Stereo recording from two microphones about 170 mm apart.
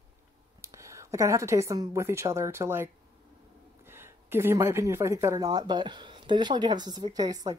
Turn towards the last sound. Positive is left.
turn(degrees=-20)  # may be behind; listen again after turning